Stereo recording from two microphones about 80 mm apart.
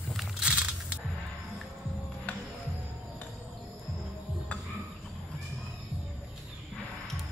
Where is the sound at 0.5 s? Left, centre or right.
Centre.